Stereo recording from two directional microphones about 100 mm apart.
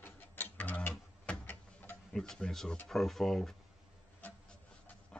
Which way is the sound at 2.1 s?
5° left (ahead or behind).